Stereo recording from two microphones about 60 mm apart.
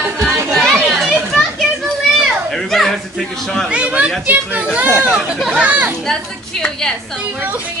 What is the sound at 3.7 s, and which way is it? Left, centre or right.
Chatter, right.